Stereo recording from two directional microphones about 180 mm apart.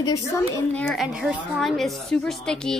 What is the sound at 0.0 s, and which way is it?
Speech, 20° left (ahead or behind).